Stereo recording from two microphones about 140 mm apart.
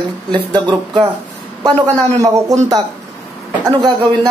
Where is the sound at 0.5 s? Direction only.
30° right (ahead or behind).